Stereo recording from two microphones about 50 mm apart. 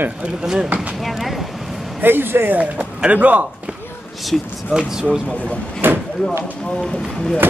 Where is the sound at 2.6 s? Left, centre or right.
Right.